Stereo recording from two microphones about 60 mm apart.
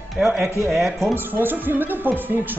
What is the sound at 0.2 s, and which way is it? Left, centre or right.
Speech, centre.